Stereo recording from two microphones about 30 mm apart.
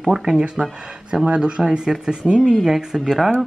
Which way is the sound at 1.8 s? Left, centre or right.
Right.